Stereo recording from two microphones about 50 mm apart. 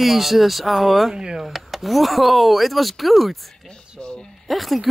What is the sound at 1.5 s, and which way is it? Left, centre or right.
Speech, centre.